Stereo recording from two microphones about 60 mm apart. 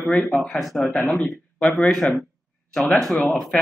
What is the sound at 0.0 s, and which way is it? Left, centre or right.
Speech, centre.